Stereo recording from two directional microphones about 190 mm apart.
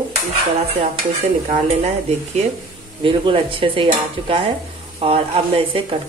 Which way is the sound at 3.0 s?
25° right (ahead or behind).